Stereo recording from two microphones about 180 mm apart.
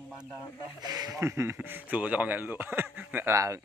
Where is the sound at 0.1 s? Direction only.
5° right (ahead or behind).